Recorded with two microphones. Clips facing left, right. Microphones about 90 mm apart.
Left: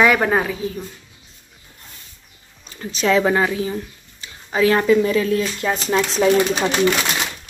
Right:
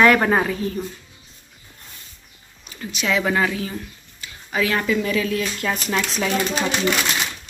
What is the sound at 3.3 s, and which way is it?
Speech, 25° left (ahead or behind).